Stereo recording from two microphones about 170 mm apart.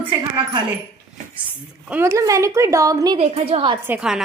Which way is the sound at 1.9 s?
15° right (ahead or behind).